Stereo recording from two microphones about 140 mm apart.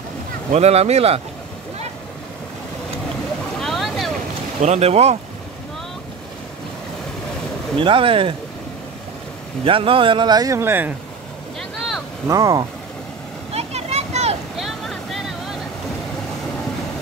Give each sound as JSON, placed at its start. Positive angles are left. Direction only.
{"t": 0.5, "sound": "speech", "side_deg": -50}
{"t": 3.5, "sound": "boat", "side_deg": 0}
{"t": 4.6, "sound": "speech", "side_deg": -50}
{"t": 7.8, "sound": "speech", "side_deg": -40}
{"t": 9.7, "sound": "speech", "side_deg": -40}
{"t": 12.3, "sound": "speech", "side_deg": -25}
{"t": 13.5, "sound": "a sound", "side_deg": -50}
{"t": 14.6, "sound": "vehicle", "side_deg": 0}